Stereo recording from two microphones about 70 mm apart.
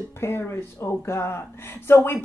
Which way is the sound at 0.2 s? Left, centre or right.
Left.